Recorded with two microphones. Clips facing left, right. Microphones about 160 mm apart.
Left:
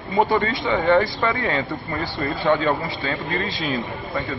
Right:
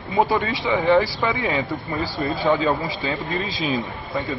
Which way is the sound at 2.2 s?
20° right (ahead or behind).